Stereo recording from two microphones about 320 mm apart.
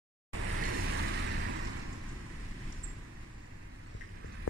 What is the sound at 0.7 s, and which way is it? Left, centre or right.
Boat, right.